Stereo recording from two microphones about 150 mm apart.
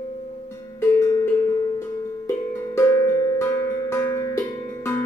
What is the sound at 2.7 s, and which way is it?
Music, 20° left (ahead or behind).